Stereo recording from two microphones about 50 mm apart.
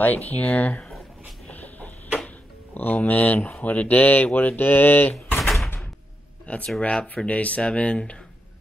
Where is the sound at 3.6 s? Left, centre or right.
Left.